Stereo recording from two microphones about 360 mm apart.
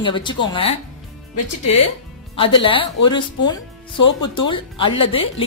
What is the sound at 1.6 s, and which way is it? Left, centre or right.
Speech, left.